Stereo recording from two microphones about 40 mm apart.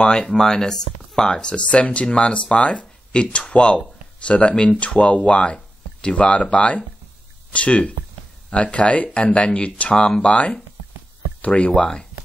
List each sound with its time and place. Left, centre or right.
0.0 s speech: centre; by 11.7 s left
11.7 s speech: left